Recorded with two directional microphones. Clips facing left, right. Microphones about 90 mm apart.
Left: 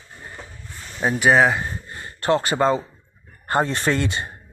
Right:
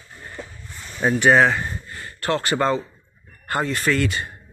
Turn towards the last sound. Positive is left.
turn(degrees=25)  # may be behind; listen again after turning